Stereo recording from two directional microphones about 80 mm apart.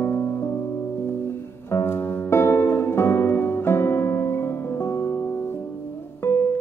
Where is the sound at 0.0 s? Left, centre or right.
Left.